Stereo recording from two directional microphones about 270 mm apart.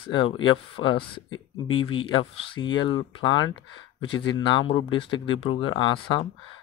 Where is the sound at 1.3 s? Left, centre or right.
Left.